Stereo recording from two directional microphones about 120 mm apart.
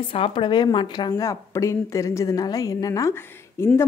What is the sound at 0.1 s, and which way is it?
A woman's voice, 45° left (ahead or behind).